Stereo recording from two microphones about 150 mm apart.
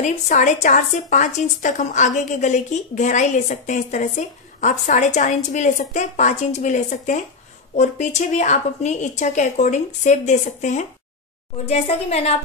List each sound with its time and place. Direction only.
0.0 s a woman's voice: 55° left (ahead or behind)